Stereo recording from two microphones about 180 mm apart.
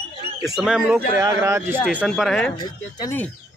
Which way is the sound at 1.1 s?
15° right (ahead or behind).